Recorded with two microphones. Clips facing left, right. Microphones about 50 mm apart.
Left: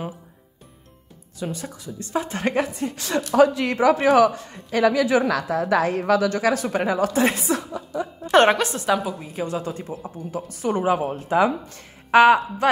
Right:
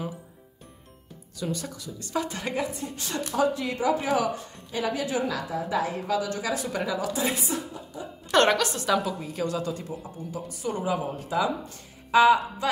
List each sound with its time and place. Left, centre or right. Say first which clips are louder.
1.4 s a woman's voice: left 2 dB; left
2.7 s a woman's voice: left 8 dB; left
6.7 s speech: left 7 dB; left
7.4 s speech: left 7 dB; left
8.3 s a woman's voice: left 5 dB; left
10.3 s speech: left 7 dB; left